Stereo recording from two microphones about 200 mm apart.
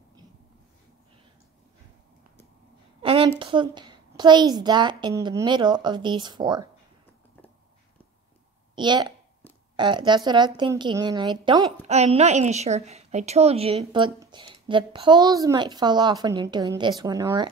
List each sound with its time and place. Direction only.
3.1 s a woman's voice: 25° right (ahead or behind)
8.7 s a woman's voice: 25° right (ahead or behind)
11.9 s a woman's voice: 35° right (ahead or behind)